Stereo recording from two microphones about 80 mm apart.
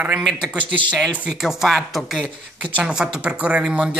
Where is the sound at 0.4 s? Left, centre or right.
Centre.